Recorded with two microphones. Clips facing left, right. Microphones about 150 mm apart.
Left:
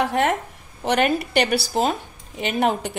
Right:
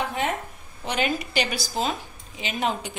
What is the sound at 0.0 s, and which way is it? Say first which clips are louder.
Speech: left 6 dB; 75° left (ahead or behind).